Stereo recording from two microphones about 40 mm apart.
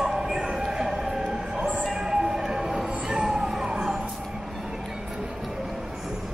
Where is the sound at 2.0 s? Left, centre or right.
Centre.